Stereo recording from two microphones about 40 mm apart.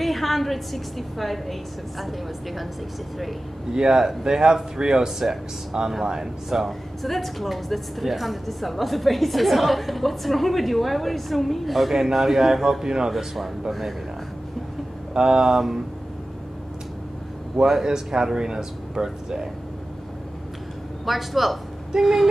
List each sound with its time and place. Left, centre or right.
0.0 s a woman's voice: centre
3.7 s speech: centre
6.6 s a woman's voice: centre
12.8 s speech: centre
13.1 s a woman's voice: centre
15.1 s speech: centre
17.6 s speech: centre
21.0 s a woman's voice: centre